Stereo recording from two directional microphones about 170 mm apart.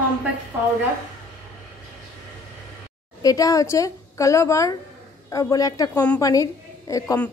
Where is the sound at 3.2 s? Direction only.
20° left (ahead or behind).